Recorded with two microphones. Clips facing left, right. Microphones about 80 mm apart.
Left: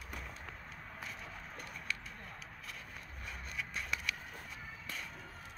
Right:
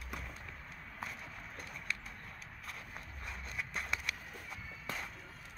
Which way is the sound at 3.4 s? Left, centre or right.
Right.